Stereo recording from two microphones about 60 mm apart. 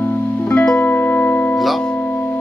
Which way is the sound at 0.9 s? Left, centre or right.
Left.